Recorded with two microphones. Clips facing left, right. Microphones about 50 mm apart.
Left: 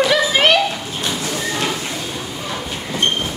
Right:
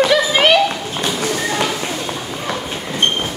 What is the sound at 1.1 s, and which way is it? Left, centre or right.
Clip-clop, right.